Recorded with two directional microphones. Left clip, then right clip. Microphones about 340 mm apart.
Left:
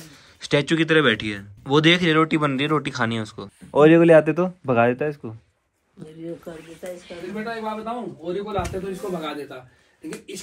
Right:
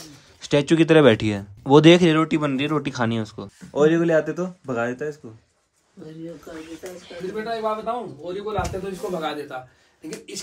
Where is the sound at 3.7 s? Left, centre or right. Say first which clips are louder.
Left 5 dB; centre.